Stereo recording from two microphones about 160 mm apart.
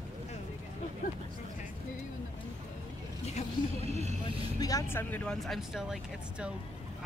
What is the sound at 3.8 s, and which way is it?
Vehicle, 45° right (ahead or behind).